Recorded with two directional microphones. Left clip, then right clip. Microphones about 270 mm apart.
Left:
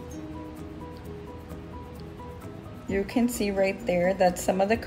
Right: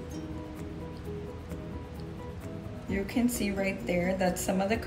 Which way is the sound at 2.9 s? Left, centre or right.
Left.